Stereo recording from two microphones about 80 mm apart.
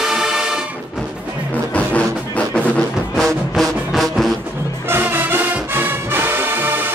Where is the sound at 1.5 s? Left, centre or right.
Centre.